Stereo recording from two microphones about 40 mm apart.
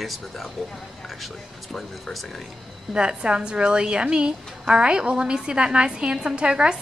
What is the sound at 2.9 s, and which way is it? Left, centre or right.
A woman's voice, right.